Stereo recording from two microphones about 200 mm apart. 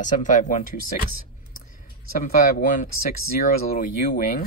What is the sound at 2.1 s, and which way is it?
Speech, 45° left (ahead or behind).